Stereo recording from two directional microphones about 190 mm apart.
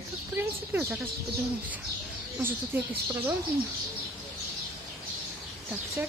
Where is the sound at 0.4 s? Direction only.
10° right (ahead or behind).